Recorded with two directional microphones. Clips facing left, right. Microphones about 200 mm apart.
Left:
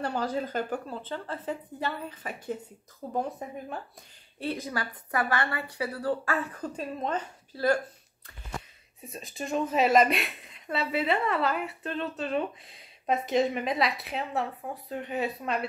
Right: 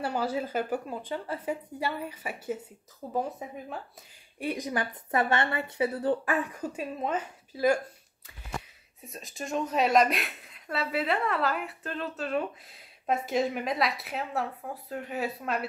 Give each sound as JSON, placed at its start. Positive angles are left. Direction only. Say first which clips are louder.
{"t": 0.0, "sound": "a woman's voice", "louder": "even", "side_deg": -10}
{"t": 4.4, "sound": "a woman's voice", "louder": "right 2 dB", "side_deg": -15}
{"t": 9.0, "sound": "a woman's voice", "louder": "left 2 dB", "side_deg": 0}